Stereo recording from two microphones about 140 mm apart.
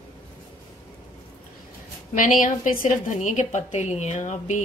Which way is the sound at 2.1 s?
70° left (ahead or behind).